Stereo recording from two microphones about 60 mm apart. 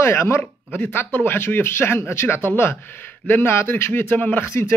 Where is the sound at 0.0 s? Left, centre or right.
Left.